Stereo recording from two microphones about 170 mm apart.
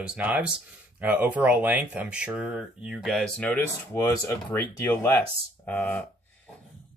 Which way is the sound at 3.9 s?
20° left (ahead or behind).